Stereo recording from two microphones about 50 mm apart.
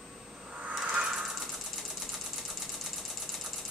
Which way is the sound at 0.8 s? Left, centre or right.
Centre.